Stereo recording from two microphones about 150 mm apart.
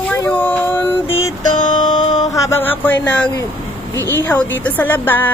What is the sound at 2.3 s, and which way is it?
Speech, 20° left (ahead or behind).